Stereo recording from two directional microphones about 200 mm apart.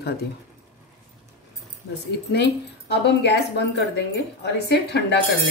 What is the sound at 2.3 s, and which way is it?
A woman's voice, 60° left (ahead or behind).